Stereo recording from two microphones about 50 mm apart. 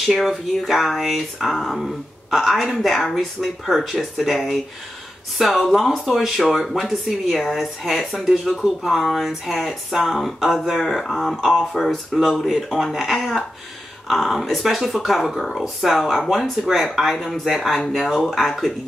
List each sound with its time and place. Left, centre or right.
0.0 s speech: centre
3.6 s speech: centre
14.0 s speech: centre